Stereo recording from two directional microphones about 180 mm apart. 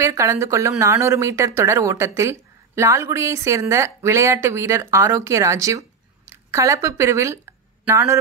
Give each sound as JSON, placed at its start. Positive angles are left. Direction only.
{"t": 0.0, "sound": "a man's voice", "side_deg": -15}